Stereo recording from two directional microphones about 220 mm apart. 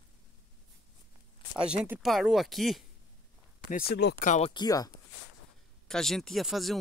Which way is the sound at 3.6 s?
40° left (ahead or behind).